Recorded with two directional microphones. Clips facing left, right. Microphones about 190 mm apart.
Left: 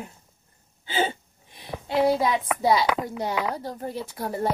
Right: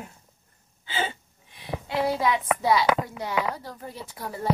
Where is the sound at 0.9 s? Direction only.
35° left (ahead or behind).